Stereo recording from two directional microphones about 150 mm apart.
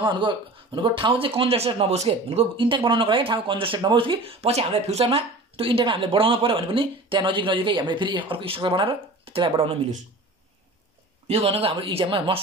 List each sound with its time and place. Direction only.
0.0 s speech: 30° right (ahead or behind)
11.2 s speech: 45° right (ahead or behind)